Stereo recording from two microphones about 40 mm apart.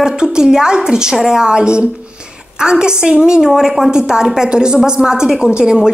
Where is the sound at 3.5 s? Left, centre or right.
Centre.